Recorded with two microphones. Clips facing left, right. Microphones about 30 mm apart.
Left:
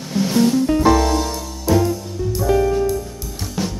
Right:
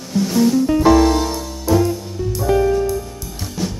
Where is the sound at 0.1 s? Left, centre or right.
Left.